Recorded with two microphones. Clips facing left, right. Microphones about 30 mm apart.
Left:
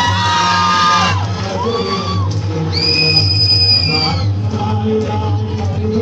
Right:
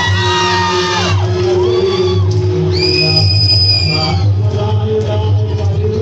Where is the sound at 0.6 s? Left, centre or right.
Centre.